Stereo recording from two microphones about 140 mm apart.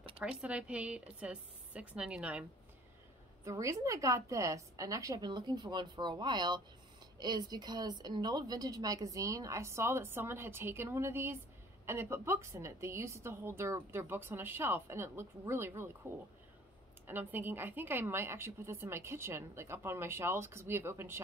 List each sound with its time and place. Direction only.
0.2 s a woman's voice: 5° right (ahead or behind)
3.4 s a woman's voice: 20° right (ahead or behind)